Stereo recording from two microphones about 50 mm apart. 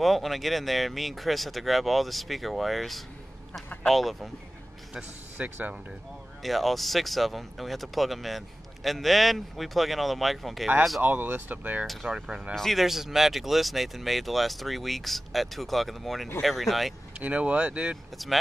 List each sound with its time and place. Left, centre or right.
0.0 s speech: centre
5.4 s speech: right
6.4 s speech: centre
11.0 s speech: right
11.8 s speech: centre
12.8 s speech: centre
17.2 s speech: right
18.1 s speech: centre